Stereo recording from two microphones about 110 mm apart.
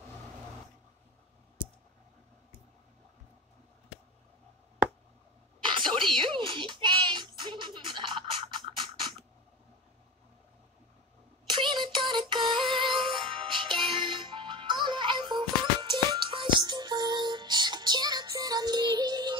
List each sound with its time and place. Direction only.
5.6 s a sound: 45° right (ahead or behind)
6.1 s music: 50° right (ahead or behind)
11.4 s music: 45° right (ahead or behind)